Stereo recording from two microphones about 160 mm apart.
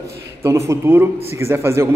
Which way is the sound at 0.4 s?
15° right (ahead or behind).